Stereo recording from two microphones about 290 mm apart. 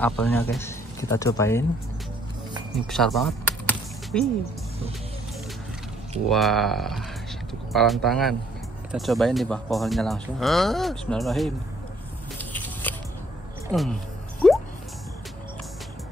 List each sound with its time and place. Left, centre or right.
0.0 s speech: centre
2.9 s music: centre
6.2 s speech: centre
12.4 s a sound: centre
13.7 s speech: centre